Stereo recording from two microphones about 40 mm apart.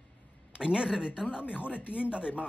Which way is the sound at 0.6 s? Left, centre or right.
Right.